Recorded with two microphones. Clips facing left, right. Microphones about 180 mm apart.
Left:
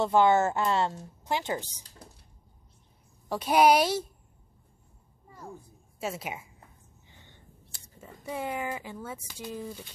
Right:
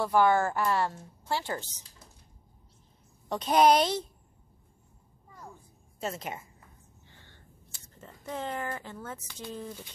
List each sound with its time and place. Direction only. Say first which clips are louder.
0.0 s a woman's voice: left 2 dB; 25° left (ahead or behind)
3.3 s a woman's voice: left 1 dB; 10° left (ahead or behind)
5.9 s a woman's voice: left 1 dB; 5° left (ahead or behind)
7.1 s a sound: left 2 dB; 15° left (ahead or behind)